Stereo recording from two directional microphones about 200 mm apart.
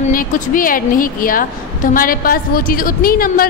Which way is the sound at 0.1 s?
45° left (ahead or behind).